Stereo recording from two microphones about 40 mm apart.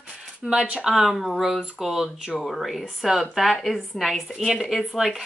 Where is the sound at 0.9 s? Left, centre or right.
Centre.